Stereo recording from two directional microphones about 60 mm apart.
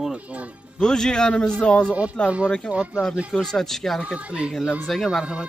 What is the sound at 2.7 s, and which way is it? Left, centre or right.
Speech, centre.